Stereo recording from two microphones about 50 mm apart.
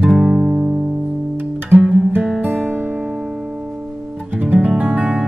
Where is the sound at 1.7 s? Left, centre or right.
Right.